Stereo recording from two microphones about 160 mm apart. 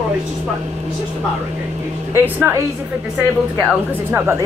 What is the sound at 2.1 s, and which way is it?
Speech, 15° right (ahead or behind).